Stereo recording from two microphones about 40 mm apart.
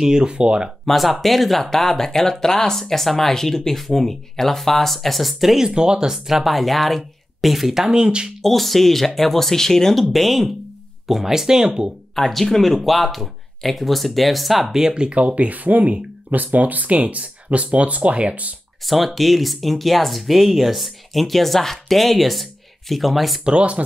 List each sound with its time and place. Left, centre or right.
0.0 s speech: centre
0.8 s speech: centre
5.7 s speech: centre
8.4 s speech: centre
12.2 s speech: centre
15.0 s speech: right
18.9 s speech: centre
23.4 s speech: right